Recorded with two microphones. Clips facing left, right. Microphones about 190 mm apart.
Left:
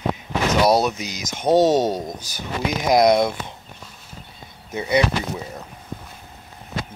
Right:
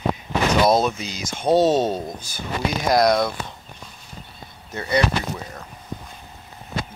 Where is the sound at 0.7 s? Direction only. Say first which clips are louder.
Even; 15° left (ahead or behind).